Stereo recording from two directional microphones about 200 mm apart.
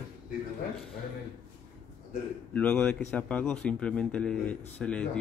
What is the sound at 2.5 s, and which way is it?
A man's voice, 5° left (ahead or behind).